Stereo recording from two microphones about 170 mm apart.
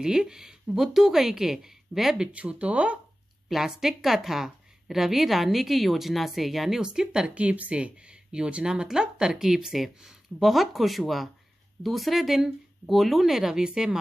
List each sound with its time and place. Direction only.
0.0 s a woman's voice: 5° right (ahead or behind)